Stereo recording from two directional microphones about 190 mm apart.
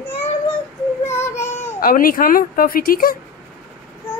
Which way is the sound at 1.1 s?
15° left (ahead or behind).